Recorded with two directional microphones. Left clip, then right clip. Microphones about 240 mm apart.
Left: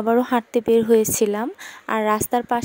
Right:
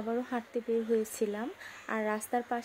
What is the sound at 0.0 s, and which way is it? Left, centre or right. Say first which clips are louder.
Speech: left 15 dB; left.